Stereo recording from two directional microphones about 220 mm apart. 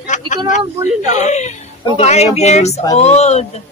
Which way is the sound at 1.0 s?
30° left (ahead or behind).